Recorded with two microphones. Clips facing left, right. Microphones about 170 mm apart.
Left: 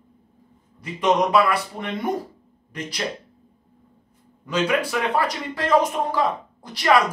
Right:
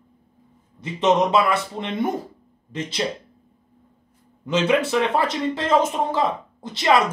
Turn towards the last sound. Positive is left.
turn(degrees=-25)  # may be behind; listen again after turning